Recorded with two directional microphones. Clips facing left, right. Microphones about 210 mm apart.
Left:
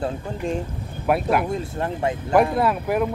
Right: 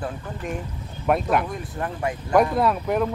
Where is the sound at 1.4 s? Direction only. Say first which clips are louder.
Left 4 dB; 25° left (ahead or behind).